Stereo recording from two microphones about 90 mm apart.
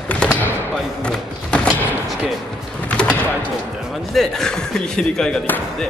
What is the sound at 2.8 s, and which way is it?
Bird, 15° left (ahead or behind).